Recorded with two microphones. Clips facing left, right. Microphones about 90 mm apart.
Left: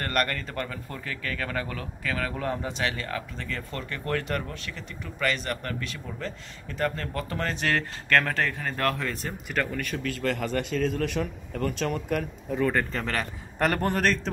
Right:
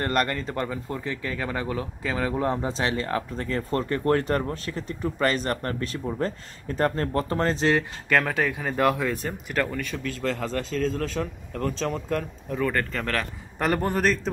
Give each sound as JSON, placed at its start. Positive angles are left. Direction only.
{"t": 0.0, "sound": "speech", "side_deg": -20}
{"t": 8.1, "sound": "speech", "side_deg": -5}